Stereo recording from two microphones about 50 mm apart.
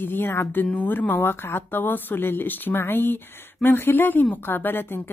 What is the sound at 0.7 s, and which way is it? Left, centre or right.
Speech, left.